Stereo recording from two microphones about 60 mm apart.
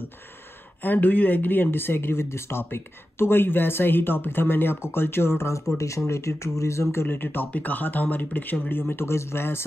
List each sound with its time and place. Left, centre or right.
0.8 s speech: left
5.8 s speech: left
7.1 s speech: left